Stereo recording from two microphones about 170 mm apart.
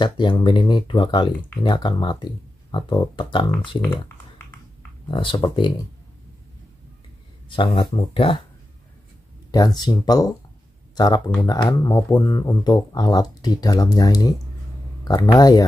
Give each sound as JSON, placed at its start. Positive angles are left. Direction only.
{"t": 0.0, "sound": "speech", "side_deg": 25}
{"t": 5.0, "sound": "speech", "side_deg": 30}
{"t": 7.4, "sound": "speech", "side_deg": 30}
{"t": 9.5, "sound": "speech", "side_deg": 25}